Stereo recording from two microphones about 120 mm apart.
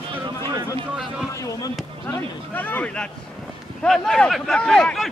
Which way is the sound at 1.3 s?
25° left (ahead or behind).